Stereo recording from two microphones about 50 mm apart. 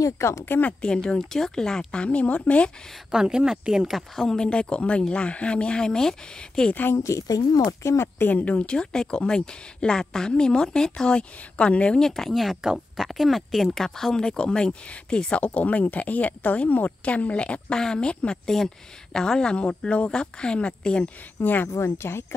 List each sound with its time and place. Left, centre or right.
0.0 s speech: left
0.5 s speech: left
0.7 s speech: centre
3.1 s a woman's voice: centre
4.5 s speech: left
6.7 s speech: left
7.0 s speech: left
8.3 s speech: left
8.6 s speech: centre
12.0 s speech: centre; by 21.1 s left
21.4 s speech: left
21.6 s speech: left